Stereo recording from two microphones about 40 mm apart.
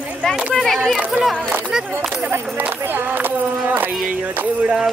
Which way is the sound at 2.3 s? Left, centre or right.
Right.